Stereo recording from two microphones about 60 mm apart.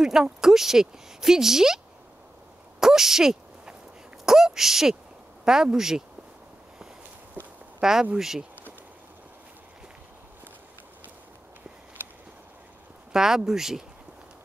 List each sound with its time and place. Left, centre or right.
0.0 s speech: centre
2.8 s a sound: centre
4.3 s speech: centre
7.8 s speech: centre
13.1 s speech: centre